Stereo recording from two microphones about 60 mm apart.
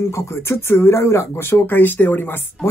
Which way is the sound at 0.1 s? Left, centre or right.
Left.